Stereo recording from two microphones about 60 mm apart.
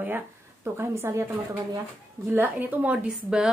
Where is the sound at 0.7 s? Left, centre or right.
Right.